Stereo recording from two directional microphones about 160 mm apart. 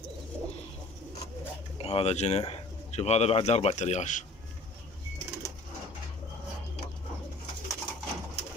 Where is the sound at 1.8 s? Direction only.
40° left (ahead or behind).